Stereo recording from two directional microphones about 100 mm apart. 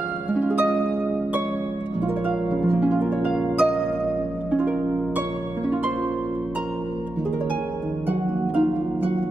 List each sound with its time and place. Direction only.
0.3 s harp: 15° right (ahead or behind)
2.2 s harp: 15° right (ahead or behind)
8.1 s harp: 15° right (ahead or behind)